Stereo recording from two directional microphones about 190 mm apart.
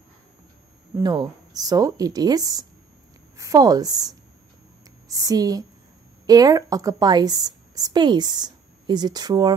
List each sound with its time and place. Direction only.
0.9 s a woman's voice: 20° right (ahead or behind)